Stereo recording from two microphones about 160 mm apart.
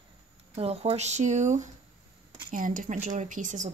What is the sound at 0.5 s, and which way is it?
Speech, 40° right (ahead or behind).